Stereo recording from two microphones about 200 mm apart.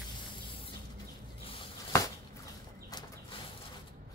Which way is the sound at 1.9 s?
15° left (ahead or behind).